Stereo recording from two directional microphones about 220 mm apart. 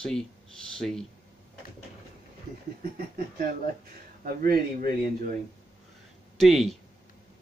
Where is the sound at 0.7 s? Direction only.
Centre (ahead or behind).